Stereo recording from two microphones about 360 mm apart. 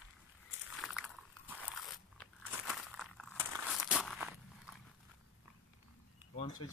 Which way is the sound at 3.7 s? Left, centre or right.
Centre.